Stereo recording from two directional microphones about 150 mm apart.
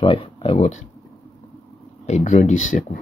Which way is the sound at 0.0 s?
35° left (ahead or behind).